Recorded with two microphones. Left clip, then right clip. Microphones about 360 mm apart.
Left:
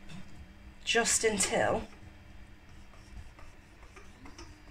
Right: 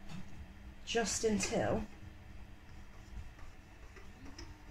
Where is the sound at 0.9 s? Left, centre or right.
Left.